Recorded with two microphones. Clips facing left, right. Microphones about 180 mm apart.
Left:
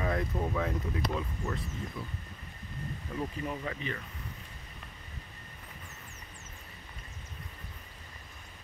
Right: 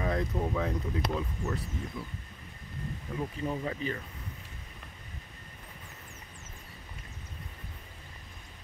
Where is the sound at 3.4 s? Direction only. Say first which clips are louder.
Right 3 dB; 25° right (ahead or behind).